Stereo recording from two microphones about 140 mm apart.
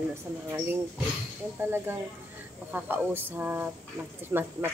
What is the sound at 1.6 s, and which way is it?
A woman's voice, 15° right (ahead or behind).